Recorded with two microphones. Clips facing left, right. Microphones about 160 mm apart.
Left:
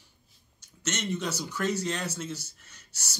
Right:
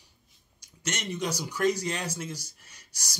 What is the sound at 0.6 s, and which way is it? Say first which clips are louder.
Speech: left 2 dB; 10° right (ahead or behind).